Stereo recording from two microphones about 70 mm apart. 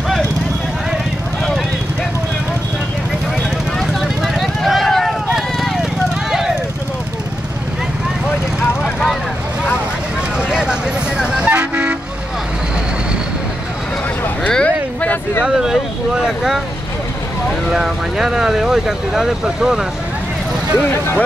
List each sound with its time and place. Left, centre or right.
3.8 s vehicle: centre
5.3 s clip-clop: centre
10.5 s vehicle: centre
11.5 s toot: centre
14.5 s a sound: centre
15.4 s vehicle: centre
17.6 s vehicle: centre